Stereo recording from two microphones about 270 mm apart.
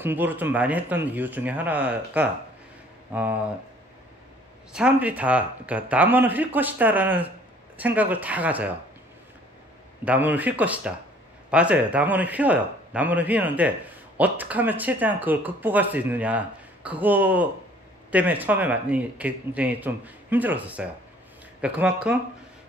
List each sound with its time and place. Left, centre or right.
0.0 s a man's voice: centre
4.7 s a man's voice: centre
10.0 s a man's voice: centre